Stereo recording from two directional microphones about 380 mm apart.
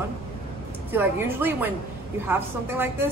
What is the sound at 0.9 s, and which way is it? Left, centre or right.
A woman's voice, centre.